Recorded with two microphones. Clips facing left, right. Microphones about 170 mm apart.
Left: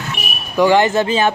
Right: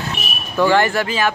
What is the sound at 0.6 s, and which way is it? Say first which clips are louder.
Speech: left 3 dB; 15° left (ahead or behind).